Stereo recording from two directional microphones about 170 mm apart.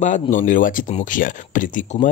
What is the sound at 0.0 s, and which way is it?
Speech, 45° left (ahead or behind).